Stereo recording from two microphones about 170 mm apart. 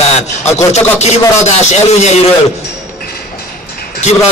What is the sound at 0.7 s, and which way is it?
A man's voice, 40° left (ahead or behind).